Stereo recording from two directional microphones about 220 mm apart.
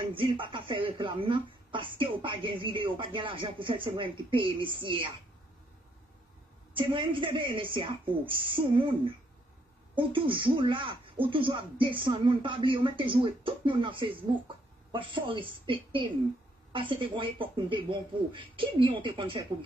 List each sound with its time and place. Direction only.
0.2 s speech: 20° right (ahead or behind)
6.7 s speech: 20° right (ahead or behind)